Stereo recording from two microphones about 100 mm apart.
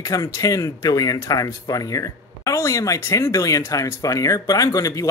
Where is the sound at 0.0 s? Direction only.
35° left (ahead or behind).